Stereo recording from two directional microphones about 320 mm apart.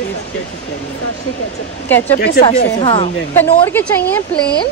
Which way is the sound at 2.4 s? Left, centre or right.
Centre.